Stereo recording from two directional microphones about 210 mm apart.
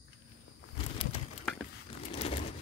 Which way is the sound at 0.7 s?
25° left (ahead or behind).